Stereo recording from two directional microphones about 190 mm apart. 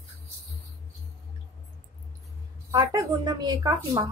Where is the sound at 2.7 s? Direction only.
20° right (ahead or behind).